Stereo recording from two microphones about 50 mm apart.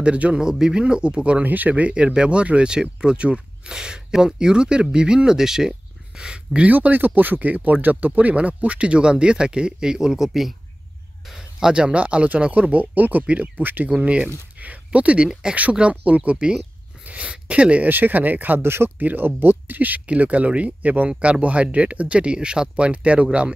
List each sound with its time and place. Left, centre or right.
0.0 s speech: right
1.4 s speech: right; by 6.7 s centre
6.7 s speech: right
13.8 s speech: right
17.0 s speech: right
17.8 s speech: right
20.1 s speech: right